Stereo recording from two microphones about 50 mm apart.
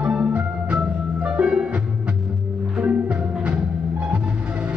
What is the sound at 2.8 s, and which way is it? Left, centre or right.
Music, right.